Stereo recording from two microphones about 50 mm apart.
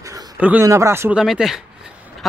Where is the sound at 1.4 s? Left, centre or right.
Centre.